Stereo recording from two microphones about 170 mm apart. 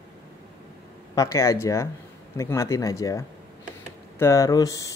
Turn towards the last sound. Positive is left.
turn(degrees=20)  # may be behind; listen again after turning